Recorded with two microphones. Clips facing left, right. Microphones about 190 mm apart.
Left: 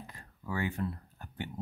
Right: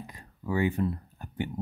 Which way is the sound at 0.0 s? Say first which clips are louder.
Right 6 dB; 15° right (ahead or behind).